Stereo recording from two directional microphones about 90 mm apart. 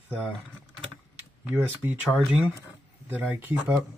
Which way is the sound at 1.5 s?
20° right (ahead or behind).